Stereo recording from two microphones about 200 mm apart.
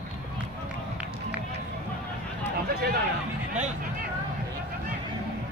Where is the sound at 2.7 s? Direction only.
50° right (ahead or behind).